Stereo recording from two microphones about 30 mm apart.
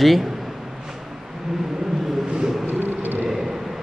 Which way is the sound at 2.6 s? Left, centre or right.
Right.